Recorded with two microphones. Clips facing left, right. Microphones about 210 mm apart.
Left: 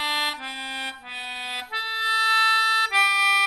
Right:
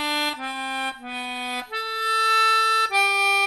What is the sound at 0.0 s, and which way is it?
Music, 55° right (ahead or behind).